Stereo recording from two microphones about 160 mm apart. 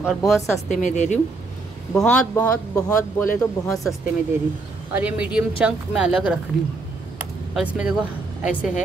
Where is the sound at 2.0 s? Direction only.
5° left (ahead or behind).